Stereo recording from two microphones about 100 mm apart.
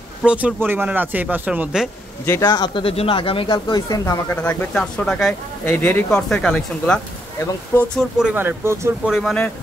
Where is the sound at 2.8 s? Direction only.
70° left (ahead or behind); by 4.4 s 35° left (ahead or behind).